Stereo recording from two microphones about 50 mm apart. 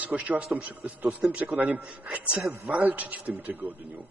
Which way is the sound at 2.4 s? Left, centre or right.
Centre.